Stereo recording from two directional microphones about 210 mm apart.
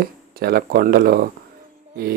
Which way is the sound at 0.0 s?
45° right (ahead or behind).